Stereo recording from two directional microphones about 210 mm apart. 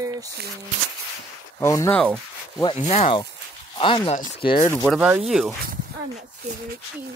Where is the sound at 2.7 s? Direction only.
30° left (ahead or behind).